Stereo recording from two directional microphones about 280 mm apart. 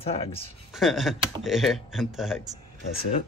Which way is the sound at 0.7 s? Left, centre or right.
Centre.